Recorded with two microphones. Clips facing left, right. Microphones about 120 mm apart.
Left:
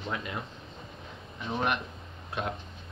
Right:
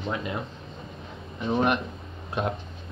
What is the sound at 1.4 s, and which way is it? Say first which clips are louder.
Speech: right 7 dB; 35° right (ahead or behind).